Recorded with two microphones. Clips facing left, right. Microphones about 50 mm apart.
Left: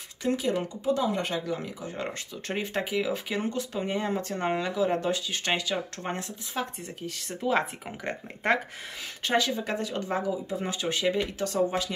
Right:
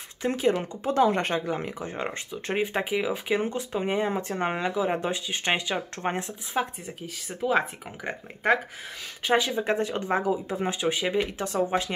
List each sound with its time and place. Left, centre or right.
0.2 s speech: right
0.9 s speech: right
1.4 s speech: right
2.0 s speech: right
7.2 s speech: centre
9.2 s speech: centre
10.6 s speech: centre